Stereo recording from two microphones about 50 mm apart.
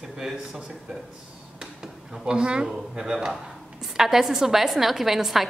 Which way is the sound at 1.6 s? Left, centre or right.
Centre.